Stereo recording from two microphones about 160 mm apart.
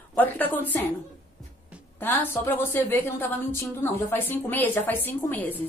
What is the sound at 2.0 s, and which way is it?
A woman's voice, 10° left (ahead or behind).